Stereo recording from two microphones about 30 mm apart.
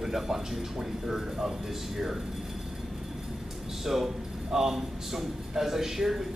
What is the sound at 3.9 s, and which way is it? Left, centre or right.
A man's voice, centre.